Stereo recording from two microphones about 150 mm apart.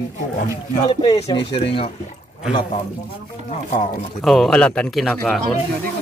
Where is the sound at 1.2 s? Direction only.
35° left (ahead or behind).